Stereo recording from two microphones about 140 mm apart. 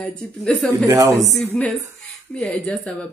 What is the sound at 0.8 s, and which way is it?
Speech, 25° right (ahead or behind).